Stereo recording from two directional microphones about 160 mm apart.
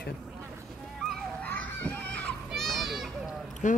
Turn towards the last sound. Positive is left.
turn(degrees=50)  # may be behind; listen again after turning